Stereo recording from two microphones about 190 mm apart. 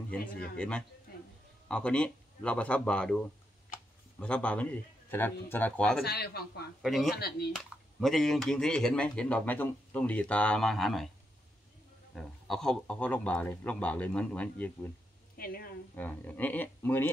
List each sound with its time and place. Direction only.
0.6 s speech: 5° left (ahead or behind)
6.0 s speech: 55° left (ahead or behind)
6.8 s speech: centre (ahead or behind)
7.2 s speech: 55° left (ahead or behind)
7.5 s speech: centre (ahead or behind)
12.2 s speech: 5° left (ahead or behind)
15.3 s speech: 50° left (ahead or behind)
16.0 s speech: 10° left (ahead or behind)